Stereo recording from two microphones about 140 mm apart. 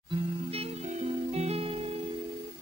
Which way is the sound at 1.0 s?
50° right (ahead or behind).